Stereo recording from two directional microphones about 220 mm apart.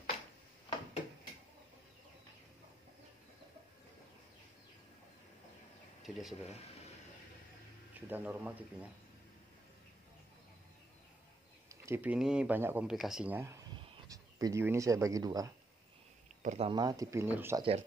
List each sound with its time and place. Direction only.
0.7 s a sound: 25° left (ahead or behind)
6.0 s speech: centre (ahead or behind)
8.1 s speech: 5° right (ahead or behind)
11.7 s speech: 10° right (ahead or behind)
16.4 s speech: 25° right (ahead or behind); by 17.6 s 10° right (ahead or behind)